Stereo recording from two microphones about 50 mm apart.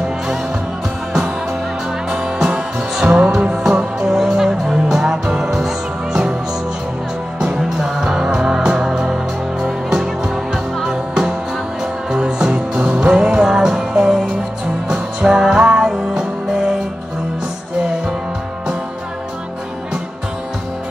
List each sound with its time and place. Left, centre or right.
2.0 s music: centre
3.6 s music: centre
7.5 s music: centre